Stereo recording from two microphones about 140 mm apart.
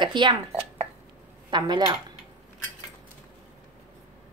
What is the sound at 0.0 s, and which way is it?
Speech, 35° right (ahead or behind).